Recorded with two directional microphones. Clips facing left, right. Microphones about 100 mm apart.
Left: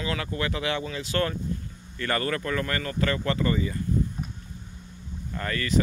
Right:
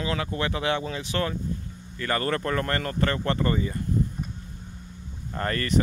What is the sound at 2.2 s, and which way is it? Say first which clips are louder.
Speech: right 2 dB; 35° right (ahead or behind).